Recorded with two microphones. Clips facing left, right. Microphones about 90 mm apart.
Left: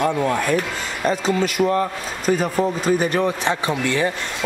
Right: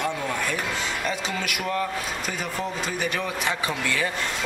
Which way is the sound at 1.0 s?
35° left (ahead or behind).